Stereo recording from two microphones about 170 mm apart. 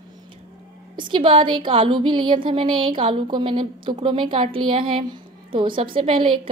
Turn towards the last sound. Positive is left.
turn(degrees=-30)  # may be behind; listen again after turning